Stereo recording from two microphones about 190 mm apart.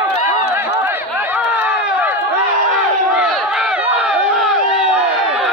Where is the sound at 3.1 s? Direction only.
5° right (ahead or behind).